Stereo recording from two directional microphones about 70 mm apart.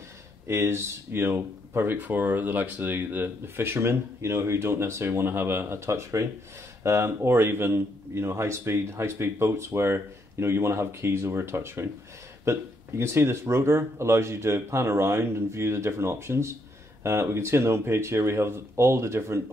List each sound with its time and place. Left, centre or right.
0.5 s a man's voice: right
2.0 s a man's voice: right